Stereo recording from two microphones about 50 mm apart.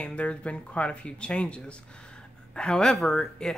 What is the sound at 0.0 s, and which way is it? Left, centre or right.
Speech, left.